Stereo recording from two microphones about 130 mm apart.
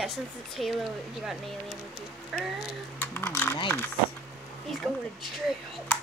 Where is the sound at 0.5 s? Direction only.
Centre (ahead or behind).